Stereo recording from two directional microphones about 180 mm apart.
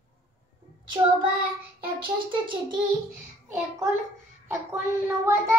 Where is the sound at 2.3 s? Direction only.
25° right (ahead or behind).